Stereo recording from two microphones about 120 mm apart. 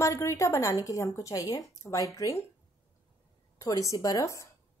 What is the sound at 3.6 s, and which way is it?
Speech, 30° left (ahead or behind).